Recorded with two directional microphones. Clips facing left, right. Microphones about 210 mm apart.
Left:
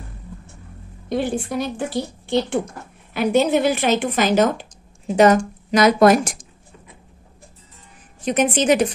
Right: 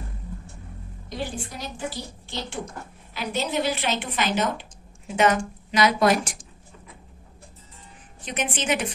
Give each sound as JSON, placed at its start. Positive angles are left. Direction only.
{"t": 1.0, "sound": "a woman's voice", "side_deg": 60}
{"t": 8.3, "sound": "a woman's voice", "side_deg": 40}